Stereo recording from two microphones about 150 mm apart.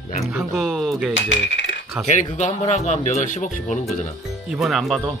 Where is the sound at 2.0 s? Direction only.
50° left (ahead or behind).